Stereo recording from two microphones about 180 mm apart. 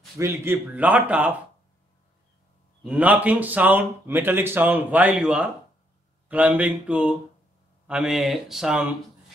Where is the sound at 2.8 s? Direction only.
10° right (ahead or behind).